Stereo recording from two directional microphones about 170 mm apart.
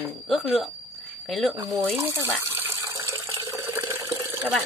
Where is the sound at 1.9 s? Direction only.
15° right (ahead or behind).